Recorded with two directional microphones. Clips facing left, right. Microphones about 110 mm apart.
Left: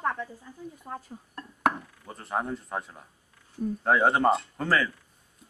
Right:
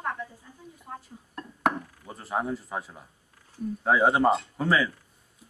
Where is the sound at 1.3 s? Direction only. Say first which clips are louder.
Even; centre (ahead or behind).